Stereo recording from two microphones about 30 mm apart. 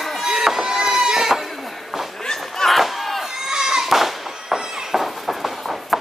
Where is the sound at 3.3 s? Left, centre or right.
Centre.